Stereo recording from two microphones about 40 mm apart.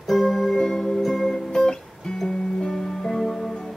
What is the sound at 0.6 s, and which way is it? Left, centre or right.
Music, centre.